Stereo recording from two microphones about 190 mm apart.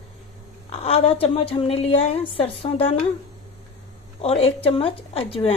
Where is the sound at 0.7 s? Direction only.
30° left (ahead or behind).